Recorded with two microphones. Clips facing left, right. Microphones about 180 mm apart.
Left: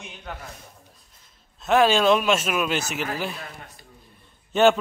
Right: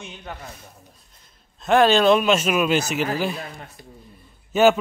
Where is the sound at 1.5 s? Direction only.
5° left (ahead or behind).